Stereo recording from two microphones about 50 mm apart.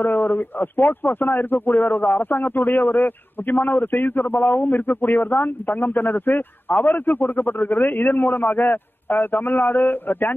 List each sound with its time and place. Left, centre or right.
0.0 s speech: left